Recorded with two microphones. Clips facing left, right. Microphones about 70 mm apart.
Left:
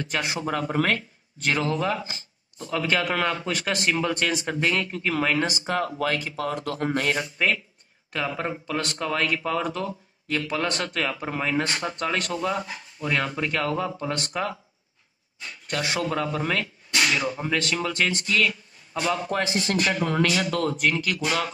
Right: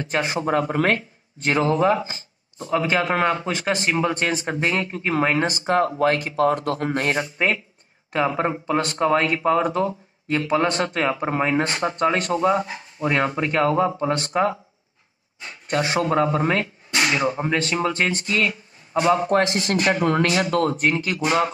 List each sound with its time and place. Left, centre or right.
0.0 s speech: right
2.0 s a sound: right
2.7 s speech: right
6.1 s speech: right